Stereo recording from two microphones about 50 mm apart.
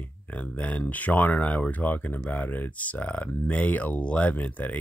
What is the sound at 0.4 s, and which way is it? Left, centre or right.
Speech, left.